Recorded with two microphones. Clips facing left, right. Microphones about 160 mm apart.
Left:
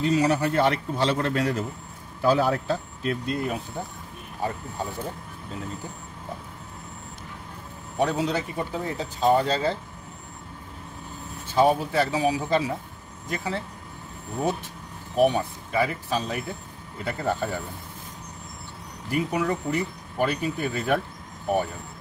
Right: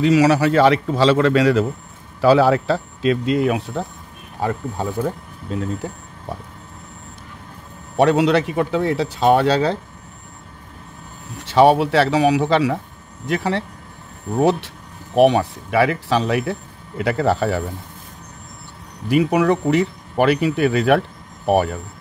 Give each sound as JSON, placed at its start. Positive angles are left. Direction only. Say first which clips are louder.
{"t": 0.0, "sound": "a man's voice", "louder": "right 7 dB", "side_deg": -90}
{"t": 4.4, "sound": "speech", "louder": "right 7 dB", "side_deg": -70}
{"t": 8.0, "sound": "speech", "louder": "right 10 dB", "side_deg": -80}
{"t": 11.3, "sound": "speech", "louder": "right 8 dB", "side_deg": -85}
{"t": 19.0, "sound": "speech", "louder": "right 9 dB", "side_deg": -80}